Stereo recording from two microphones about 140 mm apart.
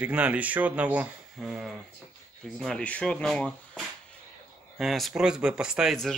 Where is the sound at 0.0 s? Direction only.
10° right (ahead or behind).